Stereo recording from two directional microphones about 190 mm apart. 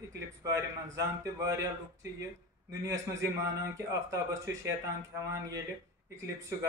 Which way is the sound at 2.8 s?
15° right (ahead or behind).